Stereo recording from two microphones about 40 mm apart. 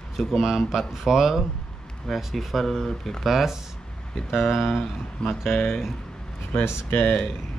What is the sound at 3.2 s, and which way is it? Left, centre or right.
Speech, centre.